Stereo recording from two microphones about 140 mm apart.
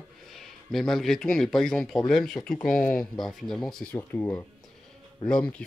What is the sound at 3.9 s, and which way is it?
Speech, 15° left (ahead or behind).